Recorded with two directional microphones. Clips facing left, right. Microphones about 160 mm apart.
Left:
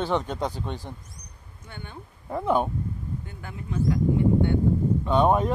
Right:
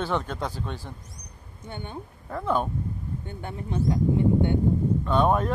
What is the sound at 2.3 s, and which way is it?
Speech, 15° left (ahead or behind).